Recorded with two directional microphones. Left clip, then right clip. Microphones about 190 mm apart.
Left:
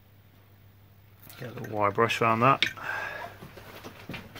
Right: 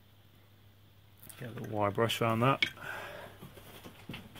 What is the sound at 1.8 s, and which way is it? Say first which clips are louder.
Speech: left 6 dB; 50° right (ahead or behind).